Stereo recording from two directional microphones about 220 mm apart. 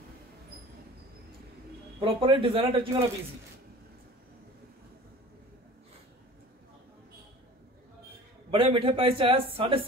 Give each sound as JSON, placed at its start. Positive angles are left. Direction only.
{"t": 2.0, "sound": "speech", "side_deg": -25}
{"t": 8.5, "sound": "speech", "side_deg": -25}